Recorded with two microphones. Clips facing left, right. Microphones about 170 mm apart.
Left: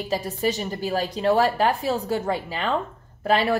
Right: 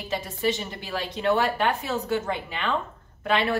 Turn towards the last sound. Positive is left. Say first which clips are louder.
# left 3 dB
turn(degrees=35)  # may be behind; listen again after turning